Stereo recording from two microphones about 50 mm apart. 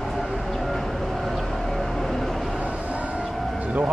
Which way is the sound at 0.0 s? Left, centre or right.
Centre.